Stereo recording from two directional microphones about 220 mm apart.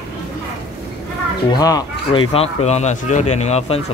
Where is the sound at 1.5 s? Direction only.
15° left (ahead or behind).